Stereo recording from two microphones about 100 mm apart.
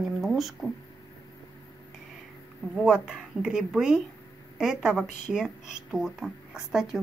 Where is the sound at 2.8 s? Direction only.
10° right (ahead or behind).